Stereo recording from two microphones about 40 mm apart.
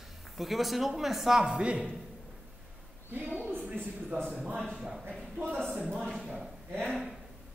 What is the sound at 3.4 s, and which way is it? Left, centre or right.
Speech, right.